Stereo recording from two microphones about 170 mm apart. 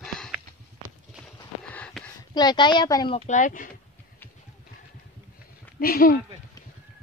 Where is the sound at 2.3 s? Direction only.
25° left (ahead or behind).